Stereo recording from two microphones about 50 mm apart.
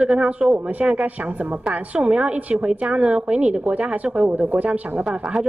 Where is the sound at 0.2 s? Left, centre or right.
Right.